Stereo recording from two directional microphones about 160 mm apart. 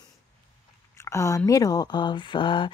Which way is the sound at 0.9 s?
15° left (ahead or behind).